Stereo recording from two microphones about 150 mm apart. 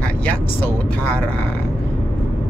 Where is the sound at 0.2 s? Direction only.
15° left (ahead or behind).